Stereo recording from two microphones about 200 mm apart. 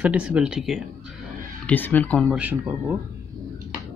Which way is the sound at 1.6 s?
10° left (ahead or behind).